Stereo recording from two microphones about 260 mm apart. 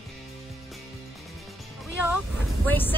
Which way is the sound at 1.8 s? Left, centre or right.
Centre.